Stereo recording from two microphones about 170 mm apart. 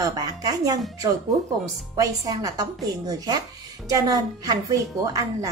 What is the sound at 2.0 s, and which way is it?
A woman's voice, 20° right (ahead or behind).